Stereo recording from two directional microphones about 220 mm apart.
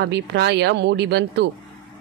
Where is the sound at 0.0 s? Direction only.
50° right (ahead or behind).